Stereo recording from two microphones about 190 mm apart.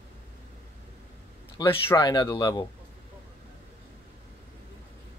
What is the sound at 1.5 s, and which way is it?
Speech, 25° left (ahead or behind).